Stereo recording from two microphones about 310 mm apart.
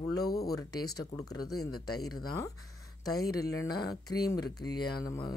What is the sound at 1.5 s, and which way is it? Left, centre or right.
Speech, left.